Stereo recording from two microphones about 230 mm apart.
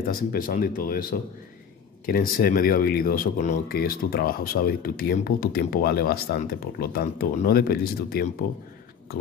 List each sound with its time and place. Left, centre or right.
0.0 s speech: left
2.0 s speech: left